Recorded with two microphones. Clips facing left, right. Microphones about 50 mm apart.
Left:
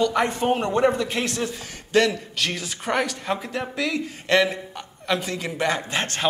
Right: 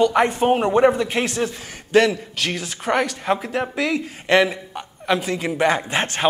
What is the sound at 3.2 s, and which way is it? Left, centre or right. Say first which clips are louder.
Speech: right 5 dB; centre.